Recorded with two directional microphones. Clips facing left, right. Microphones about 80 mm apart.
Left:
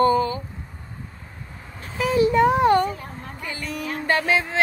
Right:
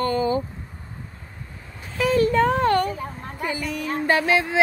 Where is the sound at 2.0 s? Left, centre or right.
Centre.